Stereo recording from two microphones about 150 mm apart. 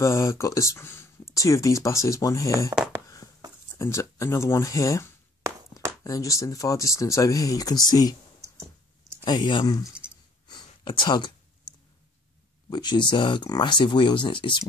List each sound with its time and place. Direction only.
0.0 s speech: 20° left (ahead or behind)
2.7 s speech: 15° right (ahead or behind)
3.7 s speech: 20° left (ahead or behind)
9.2 s speech: 30° left (ahead or behind)
10.5 s a sound: 30° left (ahead or behind)
12.6 s speech: 30° left (ahead or behind)